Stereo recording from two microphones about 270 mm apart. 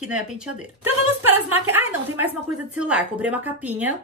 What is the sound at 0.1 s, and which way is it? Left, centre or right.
Speech, centre.